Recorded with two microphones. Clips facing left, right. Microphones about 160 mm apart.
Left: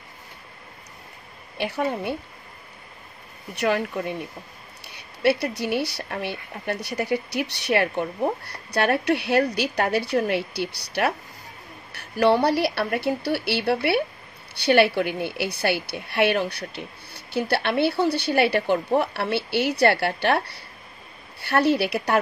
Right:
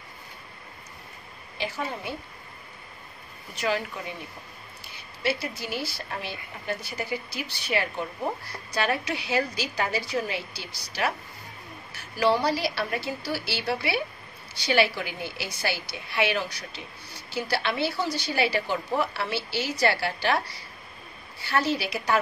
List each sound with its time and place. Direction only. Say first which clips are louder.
1.6 s speech: left 7 dB; 65° left (ahead or behind)
3.5 s speech: left 5 dB; 60° left (ahead or behind)